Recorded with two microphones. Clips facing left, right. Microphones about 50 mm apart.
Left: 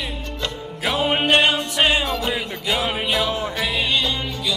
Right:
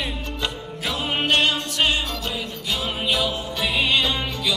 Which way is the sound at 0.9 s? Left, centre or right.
Left.